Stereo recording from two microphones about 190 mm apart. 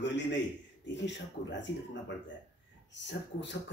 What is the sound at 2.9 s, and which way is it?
Speech, 70° left (ahead or behind).